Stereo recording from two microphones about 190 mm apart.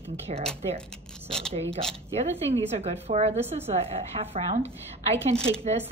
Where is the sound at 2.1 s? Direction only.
35° right (ahead or behind).